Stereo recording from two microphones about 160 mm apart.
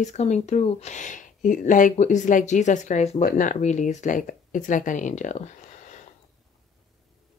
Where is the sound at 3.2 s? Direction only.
55° left (ahead or behind).